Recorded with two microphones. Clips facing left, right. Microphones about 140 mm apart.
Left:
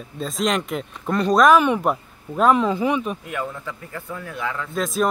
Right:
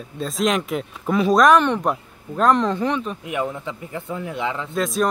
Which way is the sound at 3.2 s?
20° right (ahead or behind).